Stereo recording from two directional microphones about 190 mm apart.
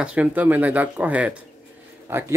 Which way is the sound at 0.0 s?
5° right (ahead or behind).